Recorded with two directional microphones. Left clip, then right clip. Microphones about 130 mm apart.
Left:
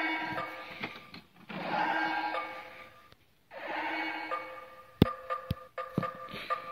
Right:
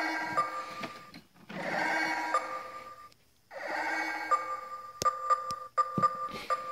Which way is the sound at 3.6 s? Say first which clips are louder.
Right 2 dB; 45° right (ahead or behind).